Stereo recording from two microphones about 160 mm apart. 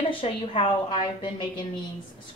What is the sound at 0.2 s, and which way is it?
A woman's voice, 35° left (ahead or behind).